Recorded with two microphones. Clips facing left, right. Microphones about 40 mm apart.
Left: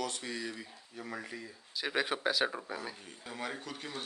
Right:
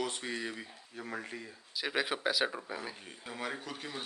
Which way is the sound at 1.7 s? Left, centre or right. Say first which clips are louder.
Even; centre.